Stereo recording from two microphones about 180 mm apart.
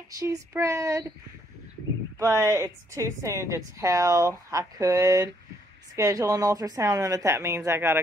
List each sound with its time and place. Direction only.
0.2 s a woman's voice: 15° right (ahead or behind)
2.1 s a woman's voice: 15° right (ahead or behind)